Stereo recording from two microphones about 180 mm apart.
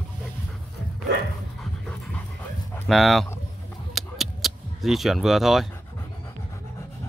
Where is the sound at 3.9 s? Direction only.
Centre (ahead or behind).